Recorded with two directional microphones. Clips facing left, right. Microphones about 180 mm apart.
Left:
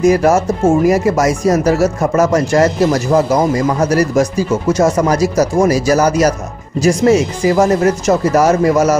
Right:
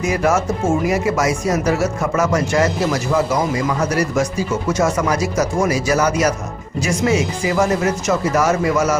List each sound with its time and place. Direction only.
0.0 s speech: 40° left (ahead or behind)